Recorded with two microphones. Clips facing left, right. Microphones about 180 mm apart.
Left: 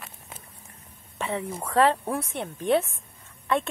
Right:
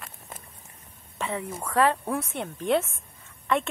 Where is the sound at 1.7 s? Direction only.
30° left (ahead or behind).